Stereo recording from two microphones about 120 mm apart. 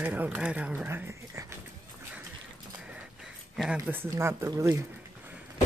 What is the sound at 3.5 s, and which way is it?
Speech, centre (ahead or behind).